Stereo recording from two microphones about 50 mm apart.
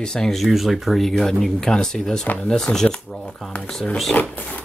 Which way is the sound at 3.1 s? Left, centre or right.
Centre.